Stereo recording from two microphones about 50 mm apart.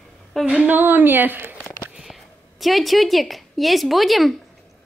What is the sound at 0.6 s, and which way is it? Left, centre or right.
Speech, right.